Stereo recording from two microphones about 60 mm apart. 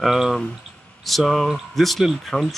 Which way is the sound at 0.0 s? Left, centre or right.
Centre.